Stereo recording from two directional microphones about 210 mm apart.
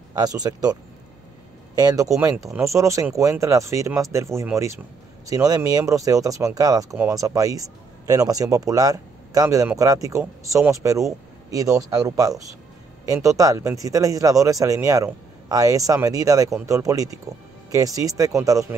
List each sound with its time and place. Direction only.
0.1 s a man's voice: 20° right (ahead or behind)
1.8 s a man's voice: 15° right (ahead or behind)